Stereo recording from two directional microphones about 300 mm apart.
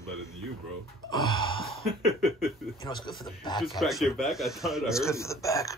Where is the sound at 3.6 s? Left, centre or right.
Centre.